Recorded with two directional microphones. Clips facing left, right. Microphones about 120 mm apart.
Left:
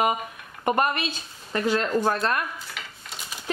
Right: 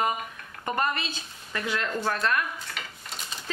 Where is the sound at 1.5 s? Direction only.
35° left (ahead or behind).